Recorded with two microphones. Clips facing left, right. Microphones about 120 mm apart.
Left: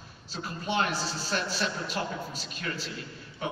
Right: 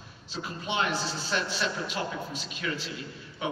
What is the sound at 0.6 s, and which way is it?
A man's voice, 40° left (ahead or behind).